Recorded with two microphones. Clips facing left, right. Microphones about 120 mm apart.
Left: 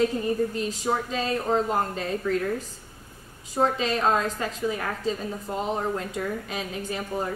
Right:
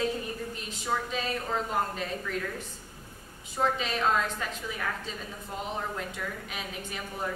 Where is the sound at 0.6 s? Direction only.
35° left (ahead or behind).